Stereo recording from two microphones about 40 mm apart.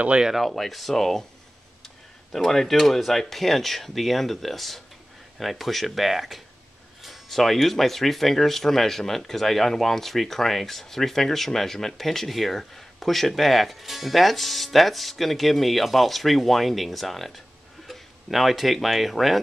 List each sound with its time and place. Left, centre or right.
0.3 s speech: centre
2.3 s speech: centre